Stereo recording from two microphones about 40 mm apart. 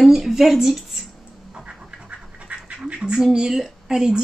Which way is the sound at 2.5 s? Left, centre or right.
Right.